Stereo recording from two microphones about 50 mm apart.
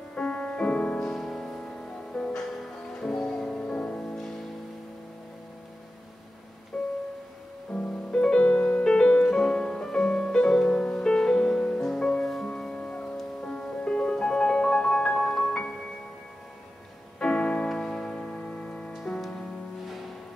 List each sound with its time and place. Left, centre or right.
0.1 s music: centre
1.1 s music: centre
6.7 s music: centre
9.2 s music: centre
12.7 s music: left
17.2 s piano: centre
17.6 s music: centre